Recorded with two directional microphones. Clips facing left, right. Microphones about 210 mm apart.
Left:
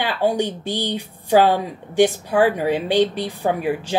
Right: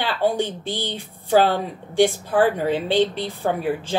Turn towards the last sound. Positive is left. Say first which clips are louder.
# left 2 dB
turn(degrees=15)  # may be behind; listen again after turning